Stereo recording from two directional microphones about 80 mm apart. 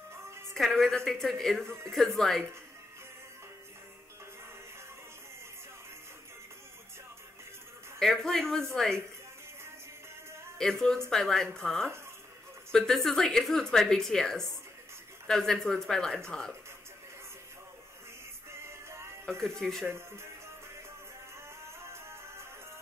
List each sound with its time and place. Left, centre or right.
0.6 s speech: centre
8.0 s speech: centre
10.6 s speech: centre
18.5 s music: right
19.2 s speech: centre
19.9 s speech: right
21.8 s music: right